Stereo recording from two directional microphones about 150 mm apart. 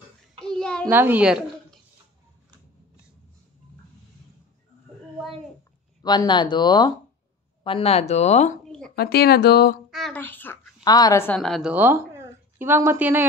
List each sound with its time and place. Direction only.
0.4 s child singing: 5° left (ahead or behind)
0.8 s speech: 15° right (ahead or behind)
6.0 s speech: 30° left (ahead or behind)
7.6 s speech: 40° left (ahead or behind)
8.6 s a sound: 5° left (ahead or behind)
8.9 s speech: 90° left
9.8 s speech: centre (ahead or behind)
10.1 s a child's voice: 15° left (ahead or behind)
10.8 s speech: 25° left (ahead or behind)
11.2 s a woman's voice: 5° left (ahead or behind)
11.7 s speech: 15° right (ahead or behind)